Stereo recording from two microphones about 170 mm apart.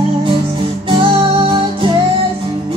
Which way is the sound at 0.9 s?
30° right (ahead or behind).